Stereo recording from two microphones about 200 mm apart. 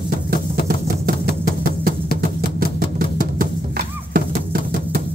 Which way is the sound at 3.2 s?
45° right (ahead or behind).